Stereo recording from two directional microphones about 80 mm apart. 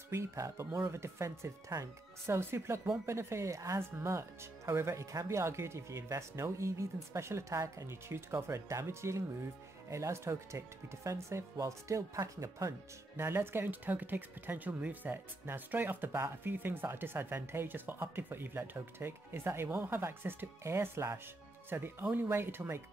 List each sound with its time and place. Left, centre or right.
0.1 s speech: right